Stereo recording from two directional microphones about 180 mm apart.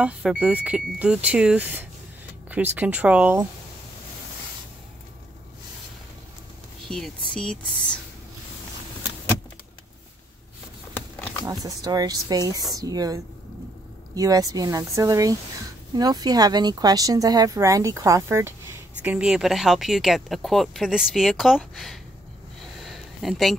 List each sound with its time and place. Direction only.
0.0 s speech: 5° right (ahead or behind)
7.3 s speech: 5° left (ahead or behind)
11.6 s speech: 20° right (ahead or behind)
19.0 s speech: 5° right (ahead or behind)
22.8 s a sound: centre (ahead or behind)